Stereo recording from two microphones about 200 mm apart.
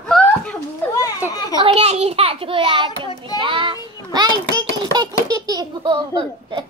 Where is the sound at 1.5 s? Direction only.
30° right (ahead or behind).